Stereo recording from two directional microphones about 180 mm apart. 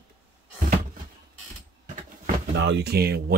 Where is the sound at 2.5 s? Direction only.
75° right (ahead or behind); by 3.4 s 60° right (ahead or behind).